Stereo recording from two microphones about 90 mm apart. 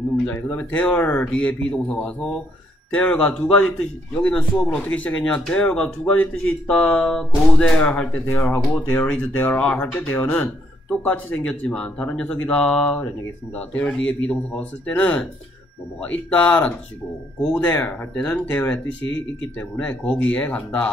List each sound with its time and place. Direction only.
0.3 s speech: 15° left (ahead or behind)
7.1 s speech: 5° left (ahead or behind)
19.8 s speech: 15° left (ahead or behind)